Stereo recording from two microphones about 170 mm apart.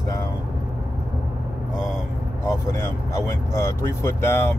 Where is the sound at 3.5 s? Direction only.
15° left (ahead or behind).